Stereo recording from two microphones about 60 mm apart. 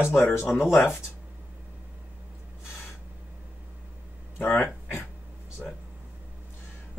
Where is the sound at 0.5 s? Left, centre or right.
Left.